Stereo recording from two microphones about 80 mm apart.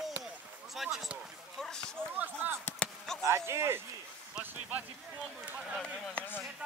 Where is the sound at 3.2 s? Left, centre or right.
Right.